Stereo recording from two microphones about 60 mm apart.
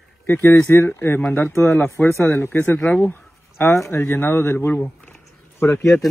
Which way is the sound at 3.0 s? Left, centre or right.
Left.